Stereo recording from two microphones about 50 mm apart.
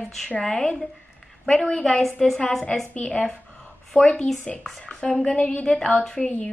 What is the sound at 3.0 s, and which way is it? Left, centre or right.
Music, left.